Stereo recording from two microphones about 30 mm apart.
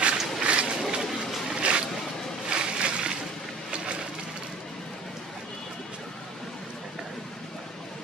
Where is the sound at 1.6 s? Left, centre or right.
Right.